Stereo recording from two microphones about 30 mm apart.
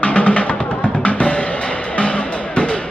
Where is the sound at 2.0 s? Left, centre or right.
Left.